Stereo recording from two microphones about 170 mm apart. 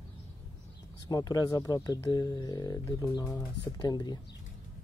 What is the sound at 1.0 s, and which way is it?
Speech, 20° left (ahead or behind).